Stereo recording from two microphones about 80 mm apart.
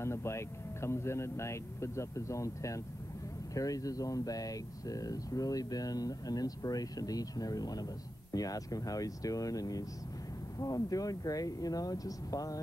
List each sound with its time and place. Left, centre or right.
0.0 s speech: left